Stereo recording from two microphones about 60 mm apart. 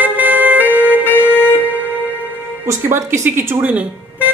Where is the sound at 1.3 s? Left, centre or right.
Left.